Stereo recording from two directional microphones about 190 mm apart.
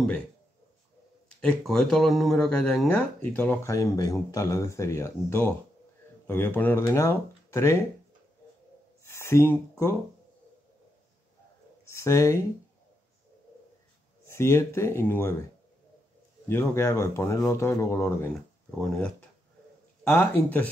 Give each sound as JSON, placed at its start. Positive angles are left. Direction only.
{"t": 1.4, "sound": "speech", "side_deg": 5}
{"t": 9.0, "sound": "a sound", "side_deg": 15}
{"t": 11.9, "sound": "speech", "side_deg": 15}
{"t": 14.2, "sound": "speech", "side_deg": 15}
{"t": 16.4, "sound": "speech", "side_deg": 15}